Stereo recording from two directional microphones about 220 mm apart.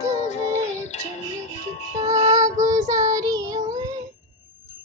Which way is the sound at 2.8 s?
15° right (ahead or behind).